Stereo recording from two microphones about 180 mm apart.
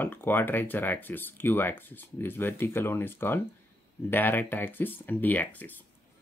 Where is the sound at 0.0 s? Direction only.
10° left (ahead or behind).